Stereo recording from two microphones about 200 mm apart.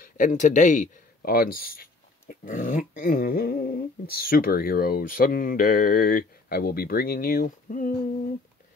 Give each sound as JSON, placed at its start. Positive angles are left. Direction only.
{"t": 0.0, "sound": "speech", "side_deg": 40}